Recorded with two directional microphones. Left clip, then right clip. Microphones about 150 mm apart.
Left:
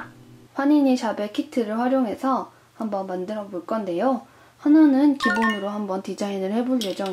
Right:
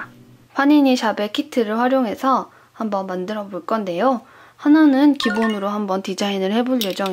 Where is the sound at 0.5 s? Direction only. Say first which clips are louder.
Right 5 dB; 30° right (ahead or behind).